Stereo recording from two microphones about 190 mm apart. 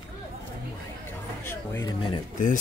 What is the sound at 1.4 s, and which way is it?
Speech, 10° left (ahead or behind).